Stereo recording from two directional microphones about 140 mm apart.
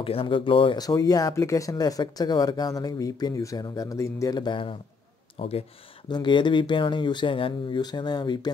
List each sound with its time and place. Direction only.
0.0 s speech: 40° left (ahead or behind)